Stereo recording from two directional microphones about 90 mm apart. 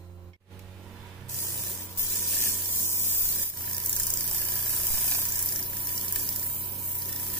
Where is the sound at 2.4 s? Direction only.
25° left (ahead or behind).